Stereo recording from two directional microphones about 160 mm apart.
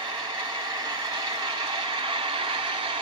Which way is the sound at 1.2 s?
30° right (ahead or behind).